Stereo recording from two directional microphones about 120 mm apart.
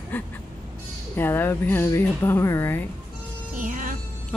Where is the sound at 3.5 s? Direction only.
90° right.